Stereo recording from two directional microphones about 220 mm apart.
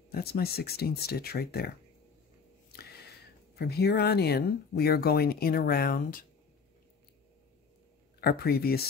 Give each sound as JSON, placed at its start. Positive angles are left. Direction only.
{"t": 0.1, "sound": "speech", "side_deg": 45}
{"t": 2.7, "sound": "a sound", "side_deg": 45}
{"t": 3.5, "sound": "speech", "side_deg": 45}
{"t": 8.2, "sound": "speech", "side_deg": 45}